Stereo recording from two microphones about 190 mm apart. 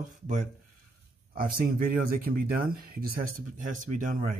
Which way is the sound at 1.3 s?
50° right (ahead or behind).